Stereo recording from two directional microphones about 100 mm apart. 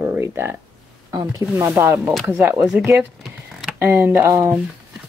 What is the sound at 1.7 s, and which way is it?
Speech, 20° right (ahead or behind).